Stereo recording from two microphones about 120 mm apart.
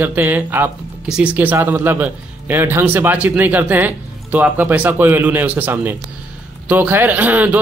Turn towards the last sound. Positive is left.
turn(degrees=-15)  # may be behind; listen again after turning